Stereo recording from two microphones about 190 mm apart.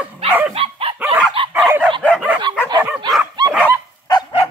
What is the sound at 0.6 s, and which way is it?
Dog, 30° right (ahead or behind).